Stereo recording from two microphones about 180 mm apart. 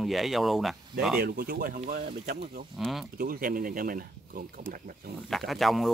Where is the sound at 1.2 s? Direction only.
55° right (ahead or behind).